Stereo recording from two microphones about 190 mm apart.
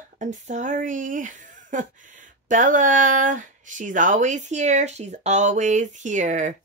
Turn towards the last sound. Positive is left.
turn(degrees=-40)  # may be behind; listen again after turning